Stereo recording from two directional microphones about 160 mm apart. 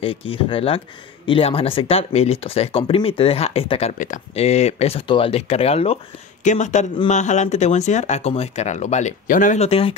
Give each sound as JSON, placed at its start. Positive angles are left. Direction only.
{"t": 0.0, "sound": "speech", "side_deg": 35}
{"t": 6.4, "sound": "speech", "side_deg": 50}